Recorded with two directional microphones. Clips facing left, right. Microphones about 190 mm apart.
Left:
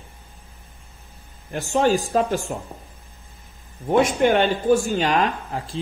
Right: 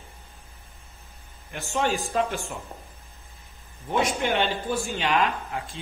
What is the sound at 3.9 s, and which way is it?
Speech, 50° left (ahead or behind).